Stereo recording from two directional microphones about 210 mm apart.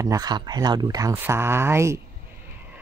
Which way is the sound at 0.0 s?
15° right (ahead or behind).